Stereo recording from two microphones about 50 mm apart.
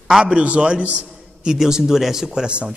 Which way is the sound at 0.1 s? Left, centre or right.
Centre.